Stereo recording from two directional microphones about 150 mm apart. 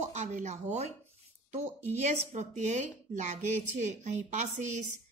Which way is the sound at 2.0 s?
50° right (ahead or behind).